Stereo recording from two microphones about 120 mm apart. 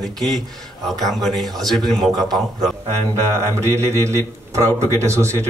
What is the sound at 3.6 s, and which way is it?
Speech, 25° right (ahead or behind).